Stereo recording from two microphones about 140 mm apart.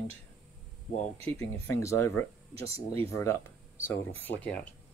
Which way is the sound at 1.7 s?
20° left (ahead or behind).